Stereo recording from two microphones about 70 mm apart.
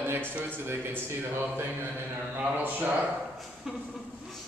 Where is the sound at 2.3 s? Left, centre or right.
Right.